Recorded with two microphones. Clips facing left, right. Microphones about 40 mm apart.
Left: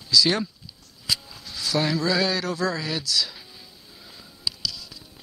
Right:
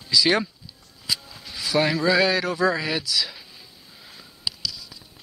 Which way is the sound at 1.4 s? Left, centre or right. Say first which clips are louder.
Right 5 dB; centre.